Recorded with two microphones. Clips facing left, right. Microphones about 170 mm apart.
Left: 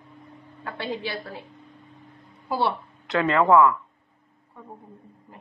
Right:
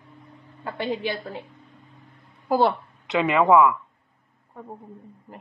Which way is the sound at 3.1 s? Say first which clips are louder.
Right 1 dB; 15° right (ahead or behind).